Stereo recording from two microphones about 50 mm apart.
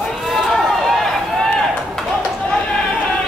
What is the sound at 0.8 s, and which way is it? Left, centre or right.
Run, centre.